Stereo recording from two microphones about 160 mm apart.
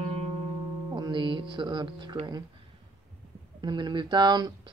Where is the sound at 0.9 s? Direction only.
30° right (ahead or behind).